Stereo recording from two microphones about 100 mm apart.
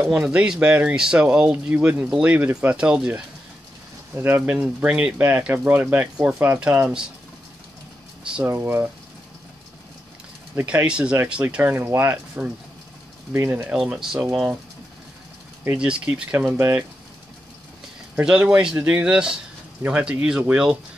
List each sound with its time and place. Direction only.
0.1 s speech: 10° right (ahead or behind)
4.1 s speech: 20° right (ahead or behind)
8.5 s speech: 25° right (ahead or behind)
10.5 s speech: 15° right (ahead or behind)
13.7 s speech: 5° right (ahead or behind)
15.8 s speech: 10° right (ahead or behind)
18.1 s speech: 15° right (ahead or behind)